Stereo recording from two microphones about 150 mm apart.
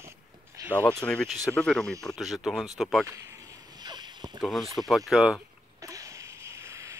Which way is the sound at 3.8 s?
30° right (ahead or behind).